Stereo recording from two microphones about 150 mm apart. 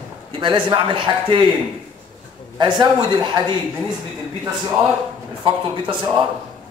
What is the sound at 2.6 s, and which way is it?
Speech, 30° right (ahead or behind).